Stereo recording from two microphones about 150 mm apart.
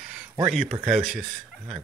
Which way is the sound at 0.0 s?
5° right (ahead or behind).